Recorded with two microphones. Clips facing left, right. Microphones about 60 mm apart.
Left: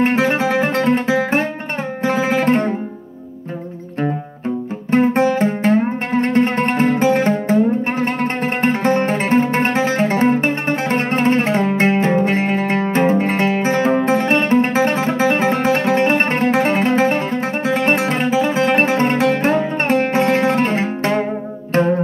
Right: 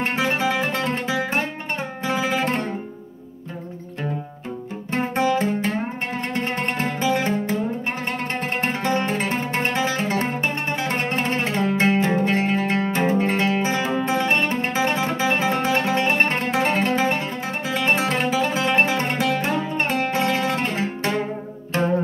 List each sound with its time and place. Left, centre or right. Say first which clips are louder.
0.0 s music: left 6 dB; left
2.0 s guitar: left 6 dB; left
4.9 s music: left 7 dB; left
17.3 s music: left 7 dB; left
18.1 s music: left 4 dB; centre
18.5 s music: left 5 dB; left